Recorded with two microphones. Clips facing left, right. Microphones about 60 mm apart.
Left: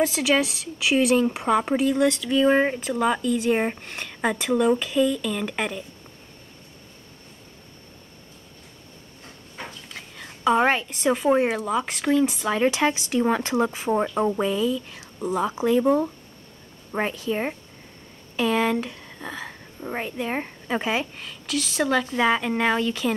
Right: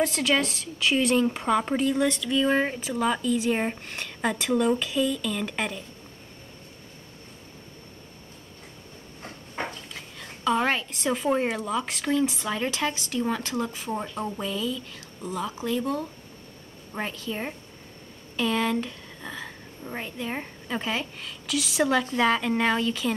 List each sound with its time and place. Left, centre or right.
0.0 s speech: centre
2.8 s speech: centre
9.9 s a sound: centre
10.6 s speech: centre
12.4 s speech: centre
17.1 s speech: centre
19.8 s speech: left; by 22.0 s centre
22.0 s speech: centre